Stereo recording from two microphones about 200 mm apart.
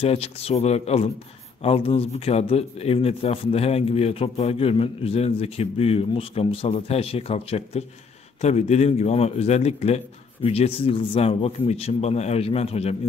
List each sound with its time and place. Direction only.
0.0 s a man's voice: 30° left (ahead or behind)